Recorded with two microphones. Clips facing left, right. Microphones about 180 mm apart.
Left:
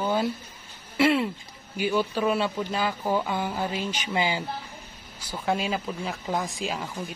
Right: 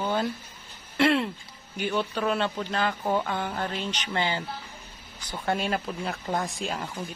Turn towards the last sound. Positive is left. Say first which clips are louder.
# left 1 dB
turn(degrees=0)  # may be behind; listen again after turning